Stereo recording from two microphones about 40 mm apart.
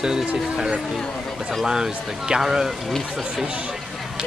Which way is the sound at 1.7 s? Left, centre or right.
Centre.